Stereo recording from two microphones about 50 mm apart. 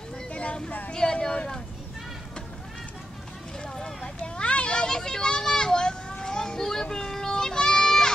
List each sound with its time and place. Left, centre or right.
0.3 s vehicle: left
0.8 s a sound: centre
3.6 s vehicle: centre
4.4 s children playing: left